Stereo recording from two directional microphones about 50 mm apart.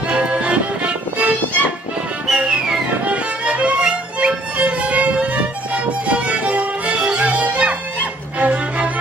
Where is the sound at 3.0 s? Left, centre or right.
Right.